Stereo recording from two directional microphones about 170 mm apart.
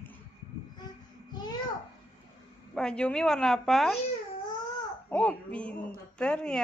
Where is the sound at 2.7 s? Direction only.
5° left (ahead or behind).